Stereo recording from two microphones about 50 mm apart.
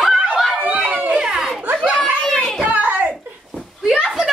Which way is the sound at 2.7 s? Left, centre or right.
Right.